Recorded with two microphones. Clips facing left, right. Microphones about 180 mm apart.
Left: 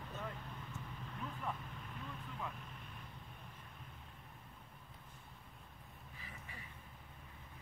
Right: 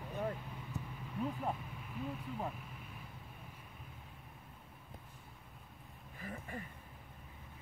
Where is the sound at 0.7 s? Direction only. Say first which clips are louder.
Right 10 dB; 35° right (ahead or behind).